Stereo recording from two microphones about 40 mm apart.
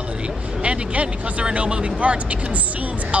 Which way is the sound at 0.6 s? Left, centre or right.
Right.